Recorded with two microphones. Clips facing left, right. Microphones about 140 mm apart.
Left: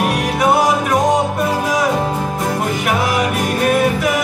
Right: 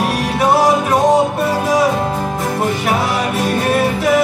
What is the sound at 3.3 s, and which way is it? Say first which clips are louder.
Music: even; 30° right (ahead or behind).